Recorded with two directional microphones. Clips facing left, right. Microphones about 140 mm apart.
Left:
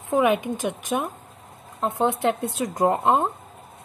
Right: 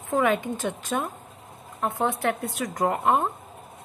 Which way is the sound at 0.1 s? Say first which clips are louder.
Left 3 dB; 15° left (ahead or behind).